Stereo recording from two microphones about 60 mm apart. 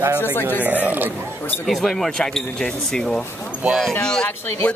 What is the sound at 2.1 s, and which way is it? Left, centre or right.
Speech, centre.